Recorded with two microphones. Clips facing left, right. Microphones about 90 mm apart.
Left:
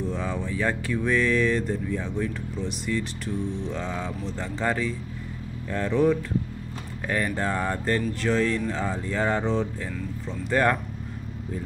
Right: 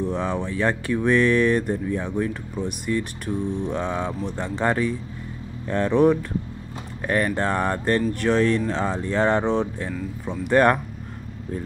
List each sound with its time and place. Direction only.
0.0 s speech: 65° right (ahead or behind)